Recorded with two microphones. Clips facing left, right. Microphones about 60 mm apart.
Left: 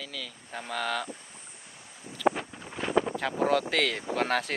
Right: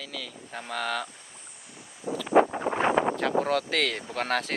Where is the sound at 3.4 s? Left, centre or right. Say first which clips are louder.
Even; centre.